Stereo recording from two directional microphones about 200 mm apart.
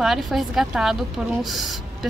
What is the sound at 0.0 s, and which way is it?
A woman's voice, centre (ahead or behind).